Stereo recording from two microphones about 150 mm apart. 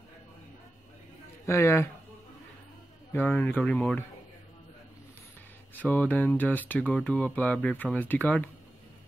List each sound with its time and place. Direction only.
1.4 s speech: 15° left (ahead or behind)
3.1 s speech: 10° left (ahead or behind)
5.8 s speech: 10° left (ahead or behind)